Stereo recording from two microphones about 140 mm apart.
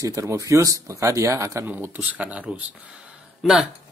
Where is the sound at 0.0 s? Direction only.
25° right (ahead or behind).